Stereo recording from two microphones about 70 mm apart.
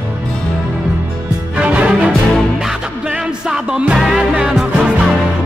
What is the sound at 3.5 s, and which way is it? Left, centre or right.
Music, centre.